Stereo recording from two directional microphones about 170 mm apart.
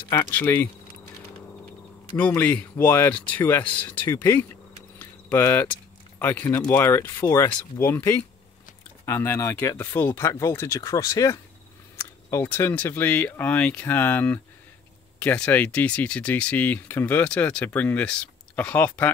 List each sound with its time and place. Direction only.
0.1 s speech: 15° left (ahead or behind)
2.1 s speech: 10° left (ahead or behind)
4.9 s a sound: 15° left (ahead or behind)
6.7 s speech: 15° left (ahead or behind)